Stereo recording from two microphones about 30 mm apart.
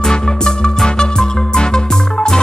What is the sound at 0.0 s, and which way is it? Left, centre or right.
Music, left.